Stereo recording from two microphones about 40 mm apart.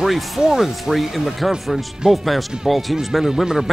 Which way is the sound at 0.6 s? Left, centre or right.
Centre.